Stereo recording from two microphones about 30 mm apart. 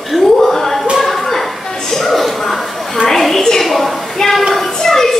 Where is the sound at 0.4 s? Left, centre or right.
Centre.